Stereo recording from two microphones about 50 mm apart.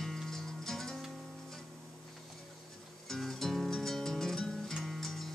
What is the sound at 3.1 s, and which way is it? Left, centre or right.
Music, centre.